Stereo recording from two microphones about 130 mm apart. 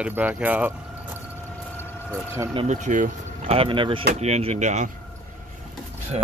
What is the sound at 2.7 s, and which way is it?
Speech, 70° right (ahead or behind).